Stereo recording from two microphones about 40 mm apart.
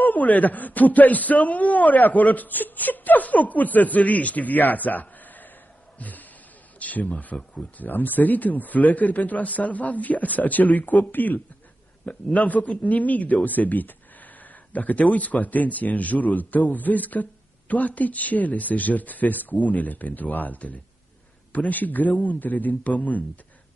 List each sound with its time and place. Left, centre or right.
0.0 s a man's voice: left
5.9 s a sound: left
6.8 s a man's voice: left
12.1 s a man's voice: left